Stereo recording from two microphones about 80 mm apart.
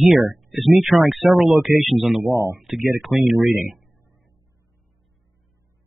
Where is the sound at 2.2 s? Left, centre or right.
Right.